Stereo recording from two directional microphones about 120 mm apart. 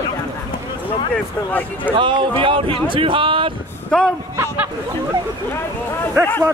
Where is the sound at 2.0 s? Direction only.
45° right (ahead or behind).